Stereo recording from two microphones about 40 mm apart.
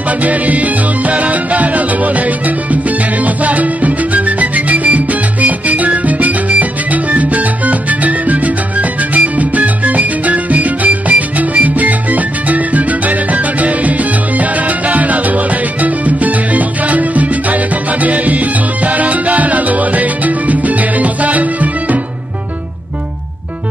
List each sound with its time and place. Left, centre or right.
0.2 s music: right